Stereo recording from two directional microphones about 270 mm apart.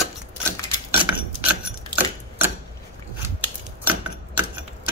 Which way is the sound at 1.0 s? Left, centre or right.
Centre.